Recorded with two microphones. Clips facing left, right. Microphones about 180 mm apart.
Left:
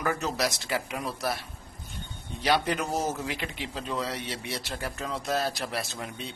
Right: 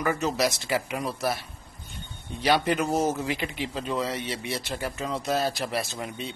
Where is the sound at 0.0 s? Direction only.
Centre (ahead or behind).